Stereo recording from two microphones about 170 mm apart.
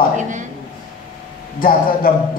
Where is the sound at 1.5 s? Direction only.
55° left (ahead or behind).